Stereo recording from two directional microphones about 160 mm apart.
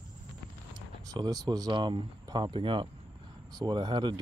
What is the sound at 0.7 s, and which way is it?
Speech, 25° right (ahead or behind).